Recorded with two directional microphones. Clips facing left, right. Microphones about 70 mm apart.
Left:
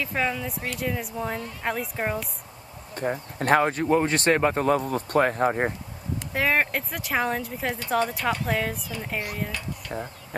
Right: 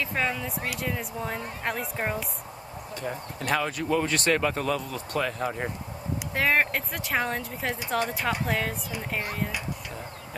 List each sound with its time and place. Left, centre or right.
0.0 s speech: centre
3.0 s speech: left
6.3 s speech: centre